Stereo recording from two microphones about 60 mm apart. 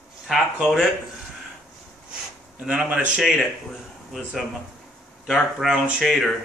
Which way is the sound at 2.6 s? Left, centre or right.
Centre.